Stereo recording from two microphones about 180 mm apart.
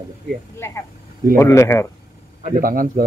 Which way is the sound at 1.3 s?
15° left (ahead or behind).